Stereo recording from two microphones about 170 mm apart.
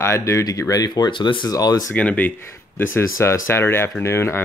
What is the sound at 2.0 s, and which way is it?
Speech, 10° left (ahead or behind).